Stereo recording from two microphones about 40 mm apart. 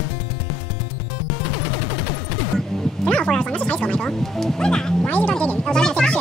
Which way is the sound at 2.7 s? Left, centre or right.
Centre.